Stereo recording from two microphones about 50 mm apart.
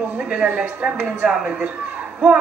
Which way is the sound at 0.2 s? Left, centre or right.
Right.